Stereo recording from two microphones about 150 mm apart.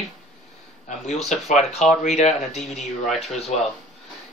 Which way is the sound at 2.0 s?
50° left (ahead or behind).